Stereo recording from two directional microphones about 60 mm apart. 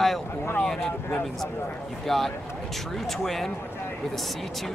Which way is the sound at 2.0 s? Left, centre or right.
Centre.